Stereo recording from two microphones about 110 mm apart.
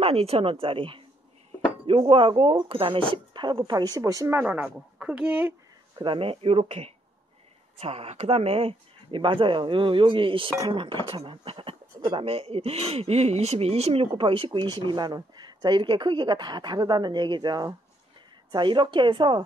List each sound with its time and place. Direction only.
0.0 s speech: 65° right (ahead or behind); by 4.4 s 30° right (ahead or behind)
4.4 s a woman's voice: 15° right (ahead or behind)
5.9 s speech: 50° right (ahead or behind)